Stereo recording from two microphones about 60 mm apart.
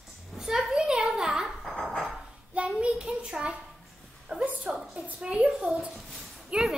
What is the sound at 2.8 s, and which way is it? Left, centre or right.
Child singing, centre.